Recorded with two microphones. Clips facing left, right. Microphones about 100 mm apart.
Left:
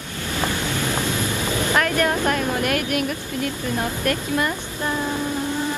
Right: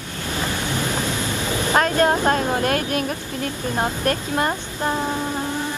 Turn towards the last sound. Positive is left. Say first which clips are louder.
# right 1 dB
turn(degrees=-25)  # may be behind; listen again after turning